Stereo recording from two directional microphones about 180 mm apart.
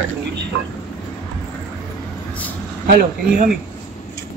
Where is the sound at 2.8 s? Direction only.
60° right (ahead or behind).